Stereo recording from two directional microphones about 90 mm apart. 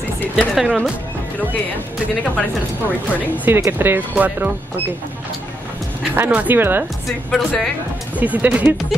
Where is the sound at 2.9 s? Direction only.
20° left (ahead or behind).